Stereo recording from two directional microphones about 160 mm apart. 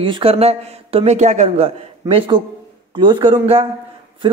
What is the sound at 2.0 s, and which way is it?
Speech, 30° right (ahead or behind).